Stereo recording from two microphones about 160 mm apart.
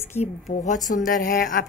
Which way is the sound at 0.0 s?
45° left (ahead or behind).